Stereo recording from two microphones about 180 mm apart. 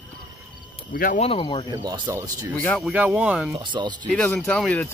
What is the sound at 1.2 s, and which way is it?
Speech, 30° left (ahead or behind).